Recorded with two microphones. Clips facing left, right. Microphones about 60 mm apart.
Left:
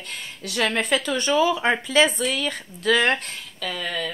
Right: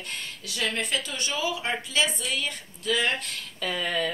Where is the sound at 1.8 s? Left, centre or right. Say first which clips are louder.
Left 8 dB; left.